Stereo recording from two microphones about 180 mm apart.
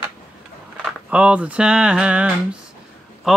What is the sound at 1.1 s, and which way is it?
Speech, 5° right (ahead or behind).